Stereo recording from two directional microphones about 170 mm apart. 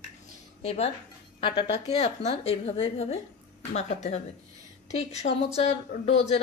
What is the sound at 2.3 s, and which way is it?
Speech, 35° left (ahead or behind).